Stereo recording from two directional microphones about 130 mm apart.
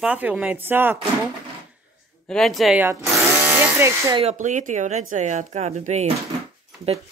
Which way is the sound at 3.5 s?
15° right (ahead or behind).